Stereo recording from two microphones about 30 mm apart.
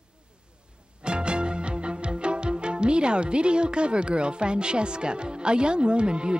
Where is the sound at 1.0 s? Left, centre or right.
Right.